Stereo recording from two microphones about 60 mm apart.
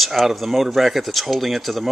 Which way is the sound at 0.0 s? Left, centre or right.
Centre.